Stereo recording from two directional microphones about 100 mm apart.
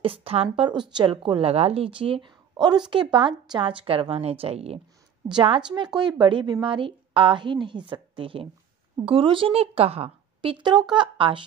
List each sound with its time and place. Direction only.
0.0 s speech: 70° right (ahead or behind)
0.7 s a woman's voice: 50° right (ahead or behind)
2.5 s a woman's voice: 45° right (ahead or behind)
2.9 s a woman's voice: 55° right (ahead or behind); by 4.7 s 85° right
5.3 s a woman's voice: 60° right (ahead or behind)